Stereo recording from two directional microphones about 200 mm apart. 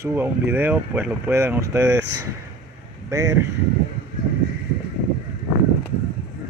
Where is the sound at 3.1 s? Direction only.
15° right (ahead or behind).